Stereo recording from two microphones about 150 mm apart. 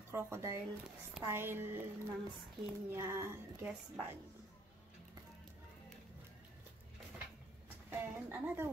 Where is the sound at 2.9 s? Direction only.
15° right (ahead or behind).